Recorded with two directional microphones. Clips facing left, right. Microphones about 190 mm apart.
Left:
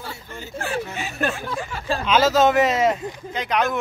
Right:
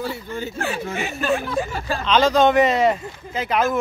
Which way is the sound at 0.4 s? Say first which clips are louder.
Even; 65° right (ahead or behind).